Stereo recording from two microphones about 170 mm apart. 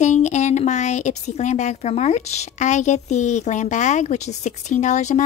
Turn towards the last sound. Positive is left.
turn(degrees=45)  # may be behind; listen again after turning